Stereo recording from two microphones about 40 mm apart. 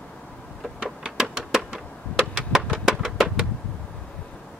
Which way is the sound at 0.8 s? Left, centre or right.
Right.